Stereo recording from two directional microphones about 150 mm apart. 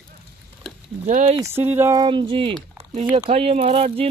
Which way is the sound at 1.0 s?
55° right (ahead or behind).